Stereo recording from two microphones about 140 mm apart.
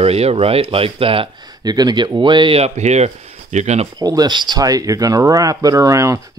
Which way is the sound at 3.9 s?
30° right (ahead or behind).